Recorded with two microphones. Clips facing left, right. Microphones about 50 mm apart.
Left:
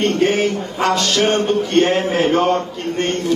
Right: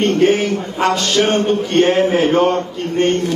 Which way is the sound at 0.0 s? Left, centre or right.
Right.